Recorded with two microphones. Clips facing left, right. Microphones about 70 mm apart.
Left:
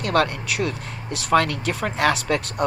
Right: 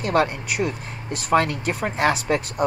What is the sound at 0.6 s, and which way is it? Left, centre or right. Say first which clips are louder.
Speech: right 2 dB; left.